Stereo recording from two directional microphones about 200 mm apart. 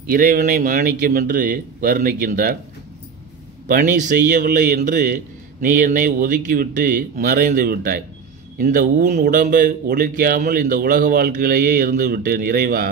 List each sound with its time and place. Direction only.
0.1 s a man's voice: 45° right (ahead or behind)
3.6 s a man's voice: 45° right (ahead or behind)